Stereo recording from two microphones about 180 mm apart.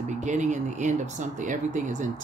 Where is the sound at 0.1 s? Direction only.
40° right (ahead or behind).